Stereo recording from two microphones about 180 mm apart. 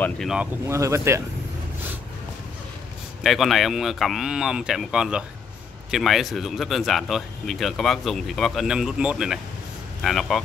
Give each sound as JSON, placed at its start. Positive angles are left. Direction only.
{"t": 0.0, "sound": "speech", "side_deg": 0}
{"t": 0.7, "sound": "speech", "side_deg": -15}
{"t": 3.3, "sound": "speech", "side_deg": 0}